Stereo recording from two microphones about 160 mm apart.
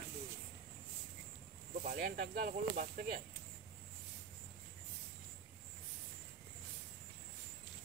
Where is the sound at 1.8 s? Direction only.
70° right (ahead or behind).